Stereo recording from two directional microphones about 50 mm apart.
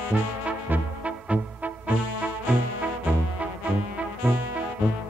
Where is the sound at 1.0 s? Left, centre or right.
Right.